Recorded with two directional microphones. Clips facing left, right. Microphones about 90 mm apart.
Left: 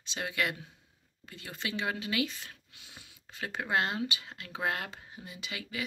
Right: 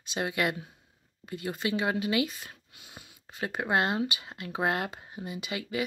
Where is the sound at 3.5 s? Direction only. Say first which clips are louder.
Right 3 dB; 25° right (ahead or behind).